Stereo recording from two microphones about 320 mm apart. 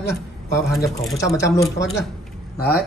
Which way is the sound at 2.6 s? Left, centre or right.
Left.